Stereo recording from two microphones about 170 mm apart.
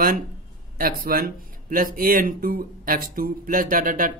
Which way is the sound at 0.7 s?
60° right (ahead or behind).